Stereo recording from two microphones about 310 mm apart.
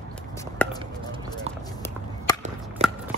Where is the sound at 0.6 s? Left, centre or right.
Centre.